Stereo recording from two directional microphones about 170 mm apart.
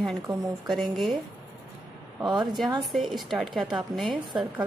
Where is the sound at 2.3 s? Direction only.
Centre (ahead or behind).